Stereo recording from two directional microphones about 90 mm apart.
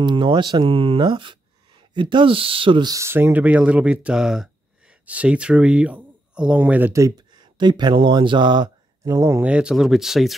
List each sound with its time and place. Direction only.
0.0 s speech: 60° right (ahead or behind)
2.9 s speech: 30° right (ahead or behind)
6.9 s speech: 35° right (ahead or behind)
7.3 s speech: 55° right (ahead or behind)
9.1 s speech: 30° right (ahead or behind)
9.4 s speech: 10° right (ahead or behind)